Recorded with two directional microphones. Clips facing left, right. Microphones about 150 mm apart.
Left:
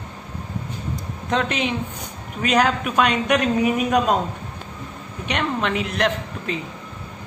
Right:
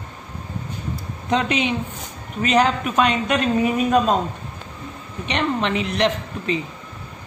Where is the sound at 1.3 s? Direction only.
Centre (ahead or behind).